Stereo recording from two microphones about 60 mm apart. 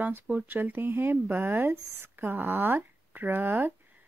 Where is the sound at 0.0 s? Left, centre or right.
Right.